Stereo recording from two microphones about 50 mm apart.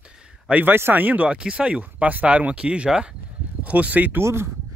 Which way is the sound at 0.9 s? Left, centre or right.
Right.